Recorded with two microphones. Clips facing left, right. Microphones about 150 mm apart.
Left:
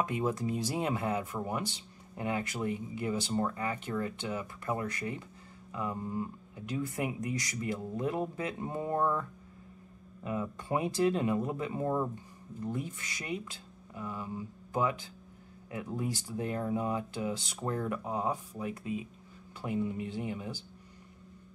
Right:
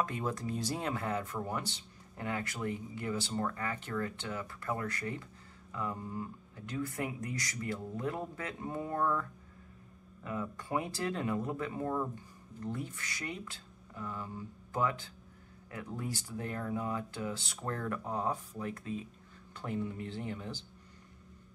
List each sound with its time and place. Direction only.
0.0 s speech: 20° left (ahead or behind)
10.2 s speech: 20° left (ahead or behind)